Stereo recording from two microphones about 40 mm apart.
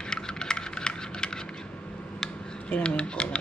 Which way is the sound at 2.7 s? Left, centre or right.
Left.